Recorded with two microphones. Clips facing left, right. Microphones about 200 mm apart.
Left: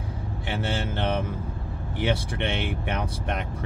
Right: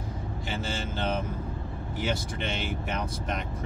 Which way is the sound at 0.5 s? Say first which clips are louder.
Left 5 dB; 65° left (ahead or behind).